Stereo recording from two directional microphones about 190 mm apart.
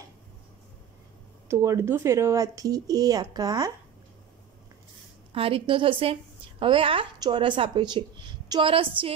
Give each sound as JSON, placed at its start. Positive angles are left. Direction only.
{"t": 1.5, "sound": "speech", "side_deg": -15}
{"t": 5.3, "sound": "speech", "side_deg": -30}